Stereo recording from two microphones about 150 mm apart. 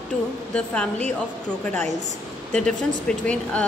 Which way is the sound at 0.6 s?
10° left (ahead or behind).